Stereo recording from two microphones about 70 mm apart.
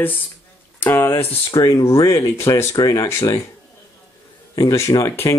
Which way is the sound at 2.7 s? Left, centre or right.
Left.